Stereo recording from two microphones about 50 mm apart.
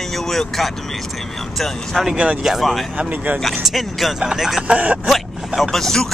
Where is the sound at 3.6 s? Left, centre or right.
Centre.